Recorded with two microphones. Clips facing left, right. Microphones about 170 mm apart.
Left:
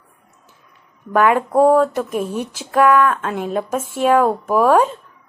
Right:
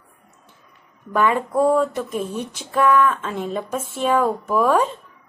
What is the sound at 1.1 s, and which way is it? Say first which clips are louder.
Speech: left 4 dB; 90° left.